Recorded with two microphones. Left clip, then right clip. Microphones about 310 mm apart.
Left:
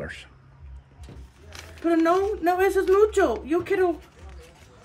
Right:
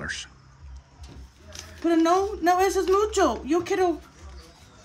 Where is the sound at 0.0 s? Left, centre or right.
Centre.